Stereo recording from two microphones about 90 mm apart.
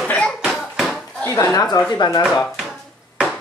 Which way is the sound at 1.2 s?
35° left (ahead or behind).